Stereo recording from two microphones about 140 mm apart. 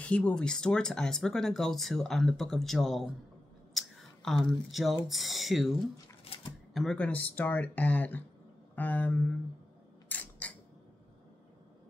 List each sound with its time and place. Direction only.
0.0 s speech: 10° left (ahead or behind)
3.7 s a sound: centre (ahead or behind)
5.0 s speech: centre (ahead or behind)
6.2 s a sound: 45° left (ahead or behind)
6.7 s speech: 5° left (ahead or behind)
10.0 s camera: 10° left (ahead or behind)